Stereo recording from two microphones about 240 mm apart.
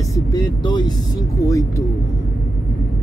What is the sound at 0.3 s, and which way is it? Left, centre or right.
Speech, centre.